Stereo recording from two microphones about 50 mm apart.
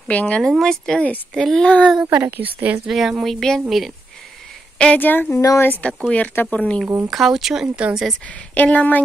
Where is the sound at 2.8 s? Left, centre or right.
Centre.